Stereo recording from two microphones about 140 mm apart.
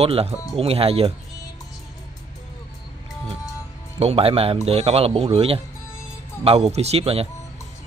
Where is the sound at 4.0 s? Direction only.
45° right (ahead or behind).